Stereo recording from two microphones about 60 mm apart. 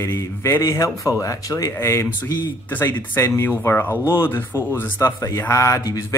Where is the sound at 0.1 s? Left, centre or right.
Left.